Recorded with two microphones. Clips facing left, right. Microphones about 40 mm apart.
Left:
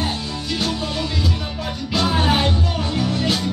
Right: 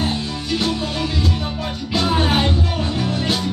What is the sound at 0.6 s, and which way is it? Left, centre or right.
Music, centre.